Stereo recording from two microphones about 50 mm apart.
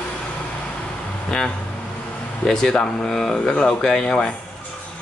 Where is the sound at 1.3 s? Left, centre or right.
Centre.